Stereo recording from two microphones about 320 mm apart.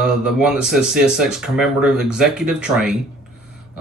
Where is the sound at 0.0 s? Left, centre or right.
Centre.